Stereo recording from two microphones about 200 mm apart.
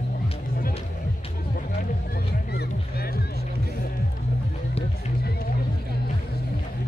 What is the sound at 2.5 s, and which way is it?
Music, 50° left (ahead or behind).